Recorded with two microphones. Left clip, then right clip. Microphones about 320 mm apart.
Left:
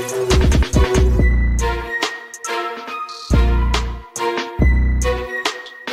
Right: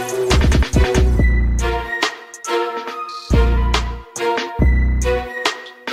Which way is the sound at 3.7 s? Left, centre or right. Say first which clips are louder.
Right 2 dB; centre.